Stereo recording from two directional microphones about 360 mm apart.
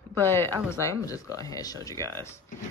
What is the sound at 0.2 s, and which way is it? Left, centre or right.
Speech, centre.